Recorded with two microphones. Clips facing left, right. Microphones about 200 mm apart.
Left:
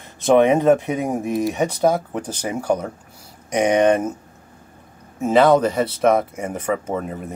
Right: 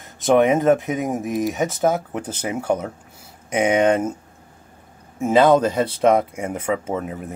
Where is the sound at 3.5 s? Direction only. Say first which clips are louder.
Left 1 dB; 5° right (ahead or behind).